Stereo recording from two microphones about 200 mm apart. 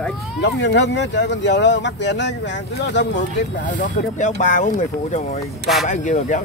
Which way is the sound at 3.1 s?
40° left (ahead or behind).